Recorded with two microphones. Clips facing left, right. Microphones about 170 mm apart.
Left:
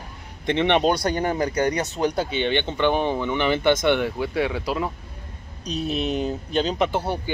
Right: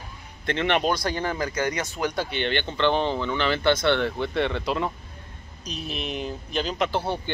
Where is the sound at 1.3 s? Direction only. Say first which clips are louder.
Left 5 dB; 35° left (ahead or behind).